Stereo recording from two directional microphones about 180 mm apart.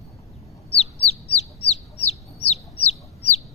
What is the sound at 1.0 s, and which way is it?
Chicken, 35° left (ahead or behind).